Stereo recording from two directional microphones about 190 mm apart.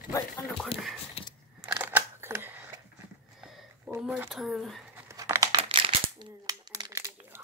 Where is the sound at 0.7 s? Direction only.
30° left (ahead or behind).